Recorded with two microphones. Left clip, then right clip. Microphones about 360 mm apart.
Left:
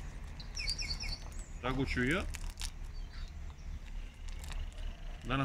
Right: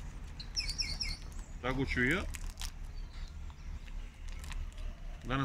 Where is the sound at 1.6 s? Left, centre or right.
Centre.